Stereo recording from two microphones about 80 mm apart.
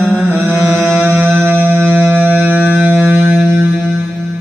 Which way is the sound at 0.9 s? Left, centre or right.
Right.